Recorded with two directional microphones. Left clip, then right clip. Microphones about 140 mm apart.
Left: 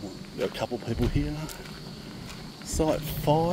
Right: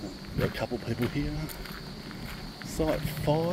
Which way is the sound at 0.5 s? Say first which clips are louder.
Left 2 dB; 25° left (ahead or behind).